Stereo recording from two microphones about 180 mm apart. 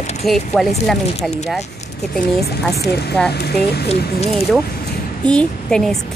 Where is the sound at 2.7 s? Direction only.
65° left (ahead or behind).